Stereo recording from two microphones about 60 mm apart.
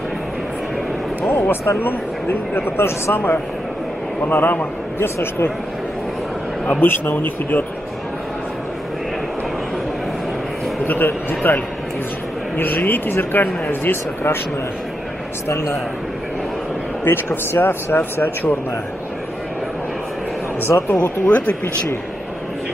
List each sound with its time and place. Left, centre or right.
1.2 s vehicle: left
1.8 s speech: left
6.8 s speech: left
10.9 s speech: left
15.4 s a man's voice: left
17.0 s speech: left
20.7 s a man's voice: left
21.3 s speech: centre